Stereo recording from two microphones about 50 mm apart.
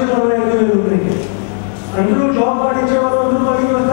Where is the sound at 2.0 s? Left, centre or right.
Centre.